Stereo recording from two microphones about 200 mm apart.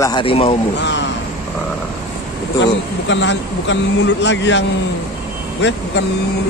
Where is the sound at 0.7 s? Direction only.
60° left (ahead or behind).